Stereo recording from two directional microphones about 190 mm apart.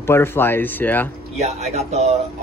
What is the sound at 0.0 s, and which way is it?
Speech, 10° left (ahead or behind).